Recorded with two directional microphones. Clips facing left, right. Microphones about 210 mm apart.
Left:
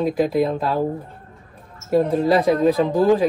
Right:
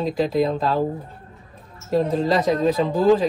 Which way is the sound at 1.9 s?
10° left (ahead or behind).